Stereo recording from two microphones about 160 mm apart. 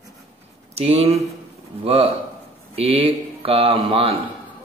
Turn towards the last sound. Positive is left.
turn(degrees=-35)  # may be behind; listen again after turning